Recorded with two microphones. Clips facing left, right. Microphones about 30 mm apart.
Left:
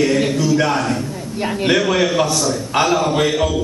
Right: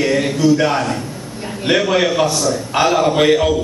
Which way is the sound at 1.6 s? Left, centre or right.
Centre.